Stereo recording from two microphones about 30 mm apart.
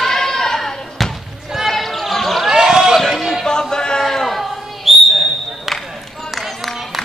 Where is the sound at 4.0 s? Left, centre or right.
Centre.